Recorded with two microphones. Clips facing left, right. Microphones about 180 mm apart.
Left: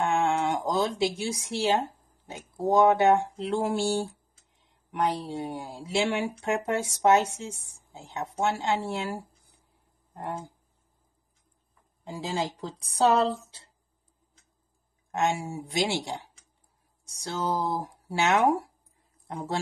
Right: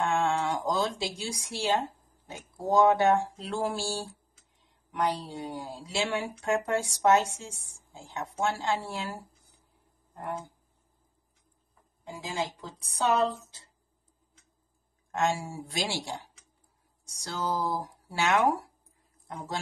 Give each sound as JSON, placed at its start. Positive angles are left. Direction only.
{"t": 0.0, "sound": "a sound", "side_deg": 20}
{"t": 2.7, "sound": "speech", "side_deg": 20}
{"t": 5.2, "sound": "speech", "side_deg": 25}
{"t": 12.1, "sound": "a woman's voice", "side_deg": 35}
{"t": 15.0, "sound": "speech", "side_deg": 20}